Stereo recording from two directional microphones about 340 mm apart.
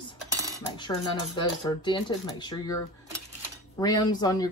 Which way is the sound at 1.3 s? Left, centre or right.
Centre.